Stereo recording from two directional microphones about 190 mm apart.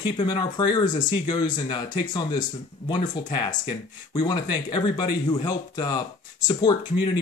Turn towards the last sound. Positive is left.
turn(degrees=20)  # may be behind; listen again after turning